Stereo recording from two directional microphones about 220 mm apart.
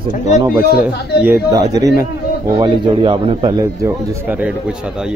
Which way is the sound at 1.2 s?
10° right (ahead or behind).